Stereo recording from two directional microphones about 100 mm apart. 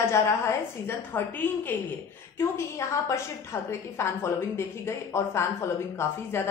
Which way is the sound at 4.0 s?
25° left (ahead or behind).